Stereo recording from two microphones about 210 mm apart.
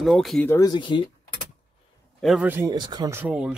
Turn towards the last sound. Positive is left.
turn(degrees=-5)  # may be behind; listen again after turning